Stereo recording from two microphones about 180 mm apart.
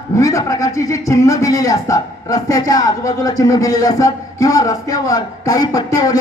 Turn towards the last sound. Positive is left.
turn(degrees=20)  # may be behind; listen again after turning